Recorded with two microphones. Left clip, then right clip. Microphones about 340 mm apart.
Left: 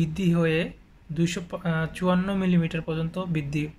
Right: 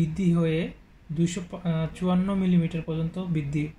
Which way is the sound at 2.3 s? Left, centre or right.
Left.